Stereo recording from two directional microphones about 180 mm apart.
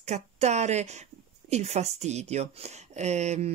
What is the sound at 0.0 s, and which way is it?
Speech, 40° right (ahead or behind).